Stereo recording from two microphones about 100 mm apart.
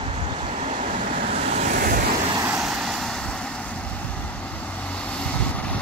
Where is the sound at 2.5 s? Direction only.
Centre (ahead or behind).